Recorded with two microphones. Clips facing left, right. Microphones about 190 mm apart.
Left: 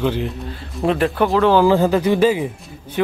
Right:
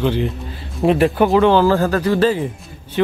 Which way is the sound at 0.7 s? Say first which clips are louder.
Right 3 dB; 5° right (ahead or behind).